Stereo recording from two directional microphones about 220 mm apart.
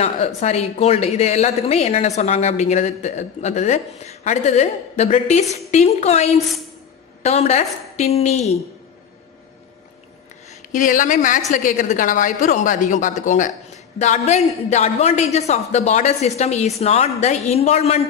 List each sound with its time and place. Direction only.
0.0 s a woman's voice: 30° left (ahead or behind)
10.7 s a woman's voice: 35° left (ahead or behind)